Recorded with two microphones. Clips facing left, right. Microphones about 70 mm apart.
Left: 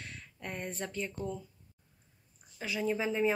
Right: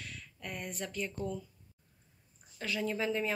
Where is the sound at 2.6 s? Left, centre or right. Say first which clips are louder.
Left 2 dB; centre.